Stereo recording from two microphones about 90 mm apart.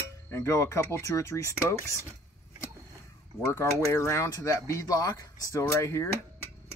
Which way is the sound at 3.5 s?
30° left (ahead or behind).